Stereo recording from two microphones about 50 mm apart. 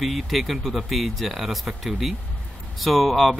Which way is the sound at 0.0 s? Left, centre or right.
Centre.